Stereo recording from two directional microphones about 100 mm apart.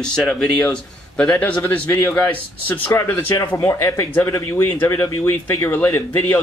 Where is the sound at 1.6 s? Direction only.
20° left (ahead or behind).